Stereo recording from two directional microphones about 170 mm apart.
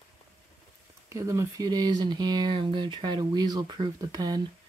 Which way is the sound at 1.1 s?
20° right (ahead or behind).